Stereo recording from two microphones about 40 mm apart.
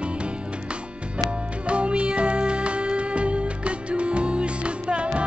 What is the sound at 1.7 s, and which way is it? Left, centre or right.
Music, right.